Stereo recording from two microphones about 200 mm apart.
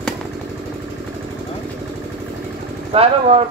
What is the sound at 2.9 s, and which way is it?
Speech, 30° right (ahead or behind).